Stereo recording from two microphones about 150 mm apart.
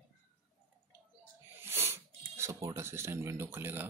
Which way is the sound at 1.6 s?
15° right (ahead or behind).